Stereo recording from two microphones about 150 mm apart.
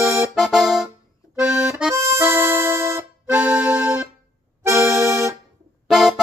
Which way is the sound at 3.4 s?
10° right (ahead or behind).